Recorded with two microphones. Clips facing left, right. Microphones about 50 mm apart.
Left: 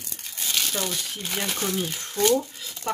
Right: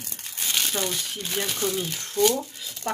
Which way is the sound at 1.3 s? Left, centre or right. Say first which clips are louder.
Right 1 dB; centre.